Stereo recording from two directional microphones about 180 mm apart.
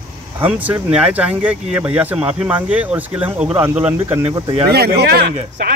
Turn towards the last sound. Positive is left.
turn(degrees=-60)  # may be behind; listen again after turning